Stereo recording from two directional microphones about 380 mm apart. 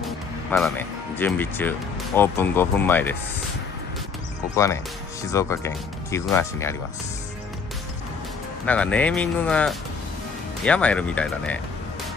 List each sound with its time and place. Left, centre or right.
0.0 s speech: centre
5.3 s speech: centre
8.6 s speech: centre